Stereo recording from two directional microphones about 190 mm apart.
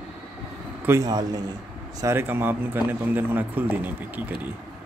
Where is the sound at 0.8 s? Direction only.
15° right (ahead or behind).